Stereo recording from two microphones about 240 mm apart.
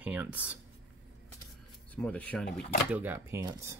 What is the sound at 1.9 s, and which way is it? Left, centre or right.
Speech, centre.